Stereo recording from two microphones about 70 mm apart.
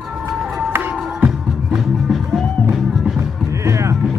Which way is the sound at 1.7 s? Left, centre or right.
Centre.